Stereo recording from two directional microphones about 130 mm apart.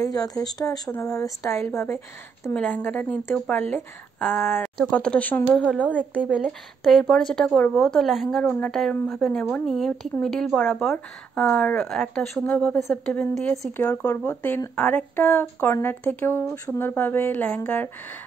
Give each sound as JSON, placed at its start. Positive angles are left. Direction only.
{"t": 0.0, "sound": "speech", "side_deg": 30}
{"t": 6.3, "sound": "speech", "side_deg": -5}
{"t": 10.9, "sound": "speech", "side_deg": 10}